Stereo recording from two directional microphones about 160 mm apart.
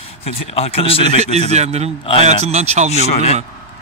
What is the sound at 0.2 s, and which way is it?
Speech, 35° left (ahead or behind).